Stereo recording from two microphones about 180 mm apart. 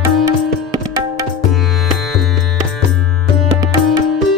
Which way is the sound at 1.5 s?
Centre (ahead or behind).